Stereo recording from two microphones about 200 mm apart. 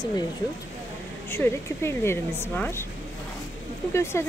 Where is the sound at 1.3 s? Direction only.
10° left (ahead or behind).